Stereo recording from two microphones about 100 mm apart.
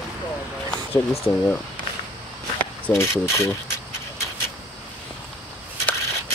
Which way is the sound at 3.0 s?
25° left (ahead or behind).